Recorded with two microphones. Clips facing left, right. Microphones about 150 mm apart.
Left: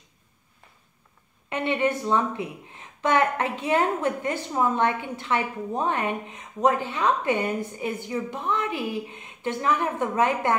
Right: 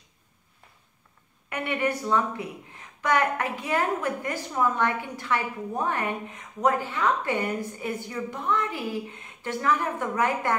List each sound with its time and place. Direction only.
1.5 s a woman's voice: 20° left (ahead or behind)